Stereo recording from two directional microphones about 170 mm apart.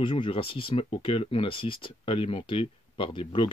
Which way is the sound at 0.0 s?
30° left (ahead or behind).